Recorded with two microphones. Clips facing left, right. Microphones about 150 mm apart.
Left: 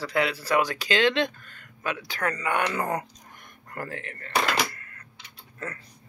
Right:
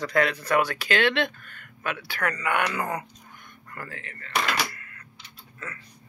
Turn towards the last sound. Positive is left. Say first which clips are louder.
# right 1 dB
turn(degrees=35)  # may be behind; listen again after turning